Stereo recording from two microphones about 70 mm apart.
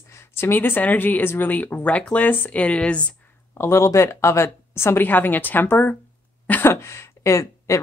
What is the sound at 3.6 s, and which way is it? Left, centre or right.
A woman's voice, left.